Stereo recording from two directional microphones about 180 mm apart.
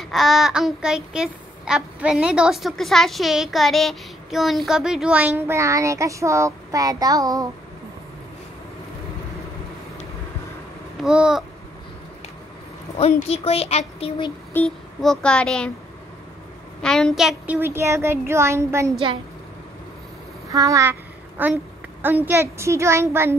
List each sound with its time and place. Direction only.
0.0 s a child's voice: centre (ahead or behind); by 7.4 s 20° right (ahead or behind)
11.0 s a child's voice: 5° right (ahead or behind)
12.9 s speech: 35° left (ahead or behind)
14.5 s speech: 5° left (ahead or behind)
16.8 s a child's voice: 5° left (ahead or behind); by 18.9 s 15° right (ahead or behind)
20.5 s a child's voice: 20° right (ahead or behind)